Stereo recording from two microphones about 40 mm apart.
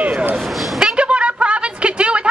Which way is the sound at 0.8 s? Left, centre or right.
Right.